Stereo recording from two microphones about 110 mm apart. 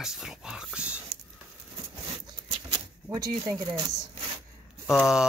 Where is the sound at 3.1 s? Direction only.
35° right (ahead or behind).